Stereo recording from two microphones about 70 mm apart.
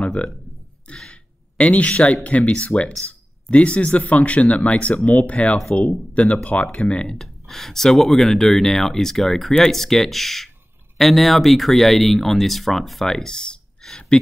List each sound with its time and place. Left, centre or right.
0.0 s speech: centre
0.8 s a sound: centre
2.2 s speech: centre